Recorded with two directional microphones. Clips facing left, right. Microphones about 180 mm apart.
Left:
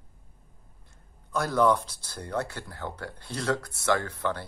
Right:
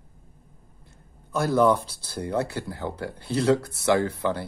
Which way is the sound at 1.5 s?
5° right (ahead or behind).